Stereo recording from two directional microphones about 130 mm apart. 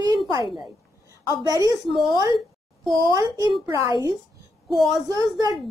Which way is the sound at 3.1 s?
30° right (ahead or behind).